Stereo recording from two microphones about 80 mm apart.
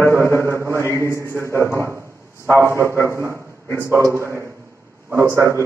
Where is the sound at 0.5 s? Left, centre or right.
Right.